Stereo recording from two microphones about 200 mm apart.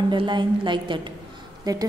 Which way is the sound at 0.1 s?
25° right (ahead or behind).